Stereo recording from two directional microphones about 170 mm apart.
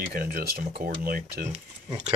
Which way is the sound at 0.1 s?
60° right (ahead or behind).